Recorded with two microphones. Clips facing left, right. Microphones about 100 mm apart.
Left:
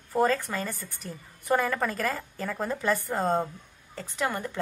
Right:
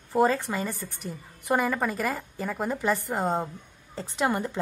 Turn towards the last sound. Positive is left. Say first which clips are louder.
# right 4 dB
turn(degrees=-20)  # may be behind; listen again after turning